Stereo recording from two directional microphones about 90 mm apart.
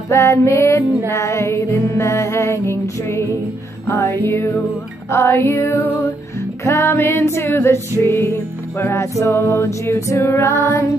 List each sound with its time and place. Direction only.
0.1 s female singing: 35° left (ahead or behind)
3.8 s music: 30° left (ahead or behind)
9.2 s female singing: 30° left (ahead or behind)